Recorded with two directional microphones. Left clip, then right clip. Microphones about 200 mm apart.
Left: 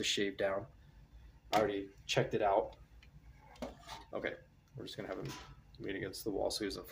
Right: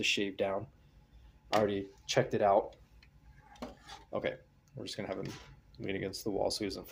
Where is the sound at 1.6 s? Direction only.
30° right (ahead or behind).